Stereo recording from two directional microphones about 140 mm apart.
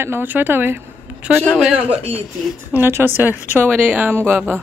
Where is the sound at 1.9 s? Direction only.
45° right (ahead or behind).